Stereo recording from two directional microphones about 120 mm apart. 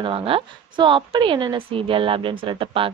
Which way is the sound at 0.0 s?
50° right (ahead or behind).